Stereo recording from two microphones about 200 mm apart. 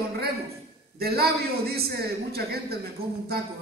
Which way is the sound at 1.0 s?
50° right (ahead or behind).